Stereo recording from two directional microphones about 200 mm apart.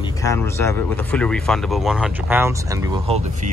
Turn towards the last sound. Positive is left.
turn(degrees=-30)  # may be behind; listen again after turning